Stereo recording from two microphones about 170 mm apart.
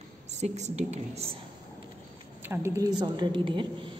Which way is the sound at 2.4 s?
15° right (ahead or behind).